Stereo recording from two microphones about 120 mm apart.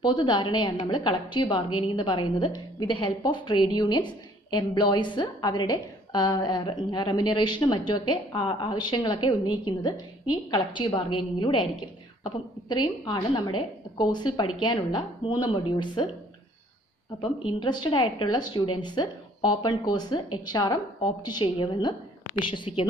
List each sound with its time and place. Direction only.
0.0 s a woman's voice: 40° left (ahead or behind)
17.2 s a woman's voice: 45° left (ahead or behind)